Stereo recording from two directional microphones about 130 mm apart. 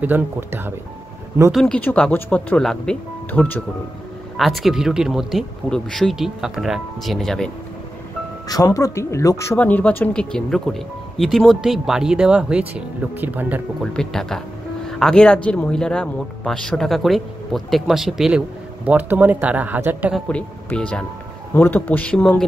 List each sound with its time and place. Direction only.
0.0 s speech: 15° right (ahead or behind)
1.5 s speech: 5° left (ahead or behind)
4.4 s speech: centre (ahead or behind)
8.5 s speech: 30° left (ahead or behind)
9.6 s speech: 10° left (ahead or behind); by 13.6 s 15° right (ahead or behind)
13.9 s speech: 5° left (ahead or behind); by 20.2 s 10° right (ahead or behind)
20.2 s speech: 10° left (ahead or behind)